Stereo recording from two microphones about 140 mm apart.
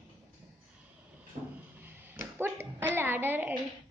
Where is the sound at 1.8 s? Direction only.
15° right (ahead or behind).